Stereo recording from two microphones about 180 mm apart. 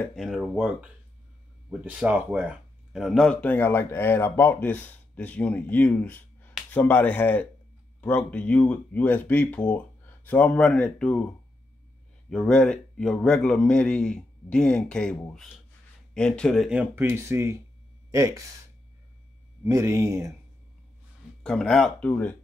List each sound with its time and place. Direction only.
0.0 s a man's voice: centre (ahead or behind)
12.3 s a man's voice: 5° left (ahead or behind); by 18.6 s 20° right (ahead or behind)
19.6 s speech: 15° right (ahead or behind)
21.4 s a man's voice: 5° left (ahead or behind)